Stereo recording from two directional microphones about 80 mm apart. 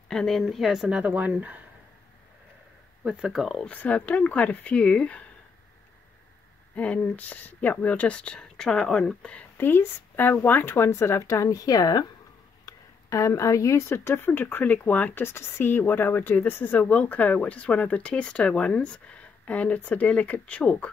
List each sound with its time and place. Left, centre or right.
0.1 s speech: centre; by 1.6 s right
3.0 s speech: centre
3.6 s speech: centre
6.7 s speech: centre
9.6 s speech: left
15.2 s speech: left; by 20.9 s centre